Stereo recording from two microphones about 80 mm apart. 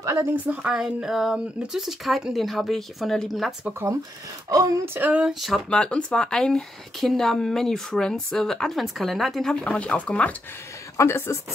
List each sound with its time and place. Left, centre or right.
0.0 s speech: right
0.6 s speech: centre
4.8 s a sound: right
5.3 s speech: centre
5.7 s speech: centre
11.0 s speech: left